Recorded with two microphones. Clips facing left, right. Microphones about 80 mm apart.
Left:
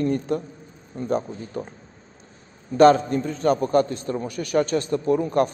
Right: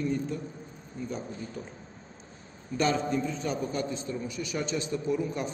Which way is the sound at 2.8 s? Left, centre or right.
Left.